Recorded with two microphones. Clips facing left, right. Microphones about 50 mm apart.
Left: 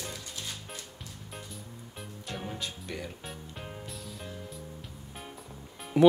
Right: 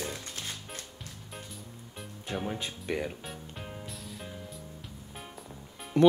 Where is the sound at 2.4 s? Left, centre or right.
Right.